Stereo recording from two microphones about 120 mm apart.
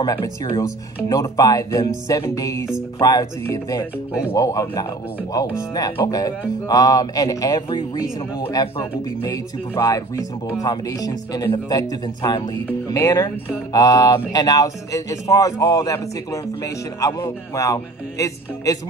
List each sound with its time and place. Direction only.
0.0 s speech: 35° left (ahead or behind)
4.3 s speech: 25° left (ahead or behind)
6.0 s speech: 30° left (ahead or behind)